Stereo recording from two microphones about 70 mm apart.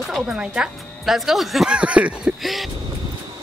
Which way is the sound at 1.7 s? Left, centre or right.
Centre.